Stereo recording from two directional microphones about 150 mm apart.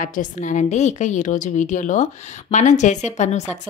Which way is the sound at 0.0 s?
60° left (ahead or behind).